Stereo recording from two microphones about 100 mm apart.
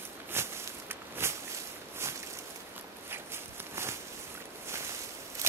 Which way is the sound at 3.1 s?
25° right (ahead or behind).